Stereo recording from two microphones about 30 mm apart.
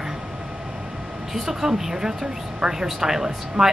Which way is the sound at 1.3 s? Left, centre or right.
Centre.